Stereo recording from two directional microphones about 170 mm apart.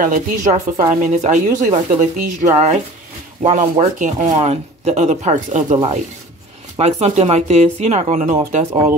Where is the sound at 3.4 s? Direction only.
40° right (ahead or behind).